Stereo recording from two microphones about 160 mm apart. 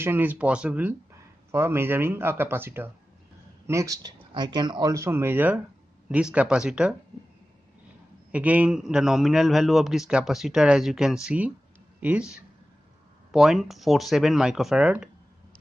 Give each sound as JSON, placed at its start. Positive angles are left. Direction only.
{"t": 0.0, "sound": "a man's voice", "side_deg": -10}
{"t": 8.3, "sound": "a man's voice", "side_deg": -10}
{"t": 13.3, "sound": "a man's voice", "side_deg": 0}